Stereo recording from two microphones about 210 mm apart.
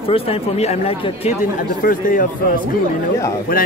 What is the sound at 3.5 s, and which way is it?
Speech, 45° left (ahead or behind).